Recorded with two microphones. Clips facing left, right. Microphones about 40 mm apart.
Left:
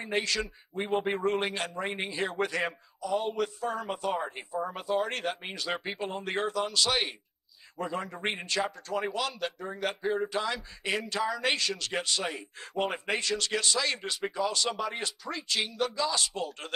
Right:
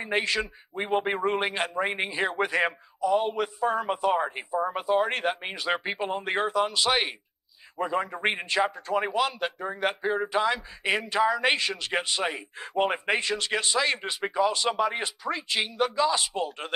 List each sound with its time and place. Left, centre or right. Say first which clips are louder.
0.0 s speech: right 4 dB; right